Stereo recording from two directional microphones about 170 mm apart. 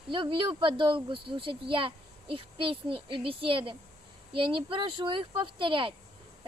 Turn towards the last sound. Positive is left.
turn(degrees=-30)  # may be behind; listen again after turning